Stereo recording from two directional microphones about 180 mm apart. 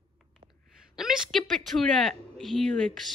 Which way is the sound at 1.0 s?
Centre (ahead or behind).